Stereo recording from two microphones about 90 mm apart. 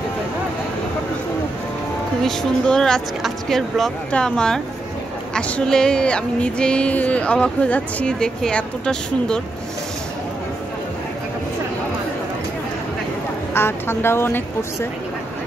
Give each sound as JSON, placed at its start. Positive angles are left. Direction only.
{"t": 2.2, "sound": "speech", "side_deg": 5}
{"t": 13.6, "sound": "speech", "side_deg": 25}